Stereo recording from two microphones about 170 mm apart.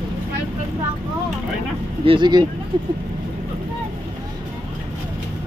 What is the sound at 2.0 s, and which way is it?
Speech, 30° right (ahead or behind).